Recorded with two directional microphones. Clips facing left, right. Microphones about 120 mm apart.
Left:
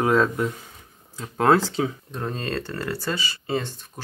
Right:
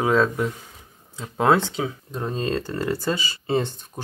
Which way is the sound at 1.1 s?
15° right (ahead or behind).